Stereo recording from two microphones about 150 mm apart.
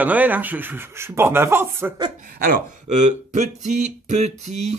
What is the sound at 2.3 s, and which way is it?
Speech, 70° right (ahead or behind).